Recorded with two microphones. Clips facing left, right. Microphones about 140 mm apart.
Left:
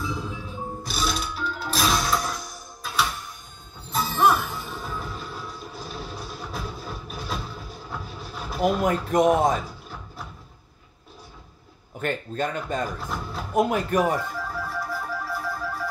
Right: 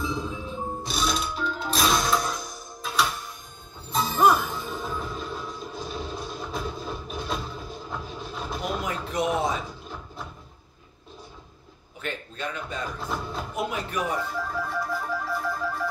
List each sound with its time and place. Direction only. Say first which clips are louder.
0.0 s music: right 1 dB; 20° right (ahead or behind)
0.8 s music: even; centre (ahead or behind)
8.8 s speech: left 8 dB; 50° left (ahead or behind)
12.0 s speech: left 7 dB; 45° left (ahead or behind)
13.0 s a sound: right 1 dB; centre (ahead or behind)
13.6 s speech: left 9 dB; 50° left (ahead or behind)
14.5 s music: right 1 dB; 5° left (ahead or behind)